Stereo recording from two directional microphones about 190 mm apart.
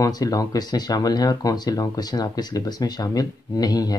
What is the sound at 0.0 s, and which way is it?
Speech, 20° left (ahead or behind).